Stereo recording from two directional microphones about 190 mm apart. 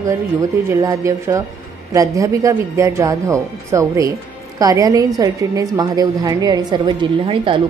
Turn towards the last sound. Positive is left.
turn(degrees=-25)  # may be behind; listen again after turning